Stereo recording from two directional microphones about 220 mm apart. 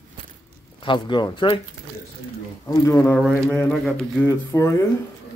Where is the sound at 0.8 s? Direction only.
20° left (ahead or behind).